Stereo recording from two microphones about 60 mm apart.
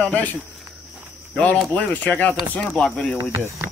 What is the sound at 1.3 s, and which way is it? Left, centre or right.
Speech, left.